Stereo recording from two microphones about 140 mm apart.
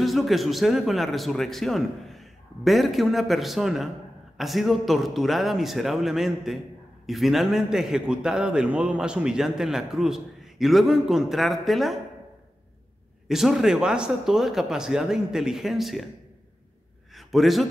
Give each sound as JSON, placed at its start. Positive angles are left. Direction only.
{"t": 0.0, "sound": "a man's voice", "side_deg": 0}
{"t": 13.3, "sound": "a man's voice", "side_deg": 0}
{"t": 17.1, "sound": "a man's voice", "side_deg": 0}